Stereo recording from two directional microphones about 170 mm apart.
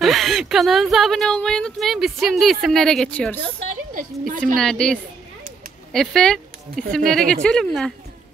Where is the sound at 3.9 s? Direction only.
50° right (ahead or behind).